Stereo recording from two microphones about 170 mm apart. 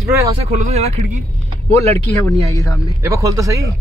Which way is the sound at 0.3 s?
35° right (ahead or behind).